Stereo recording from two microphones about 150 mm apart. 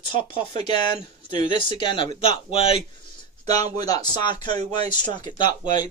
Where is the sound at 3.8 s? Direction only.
25° left (ahead or behind).